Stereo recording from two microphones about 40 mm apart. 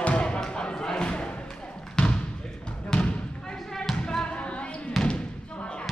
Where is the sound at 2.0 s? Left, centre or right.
Left.